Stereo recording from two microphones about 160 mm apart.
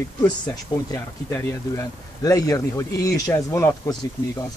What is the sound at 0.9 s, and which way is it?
Speech, 15° left (ahead or behind).